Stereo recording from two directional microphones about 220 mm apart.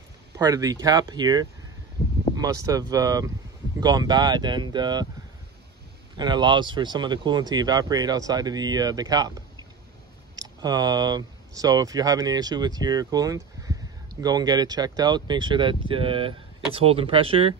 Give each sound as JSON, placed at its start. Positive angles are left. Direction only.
{"t": 0.4, "sound": "speech", "side_deg": -15}
{"t": 6.1, "sound": "speech", "side_deg": -20}